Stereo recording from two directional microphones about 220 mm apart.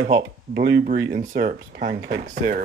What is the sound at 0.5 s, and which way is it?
Speech, 50° right (ahead or behind).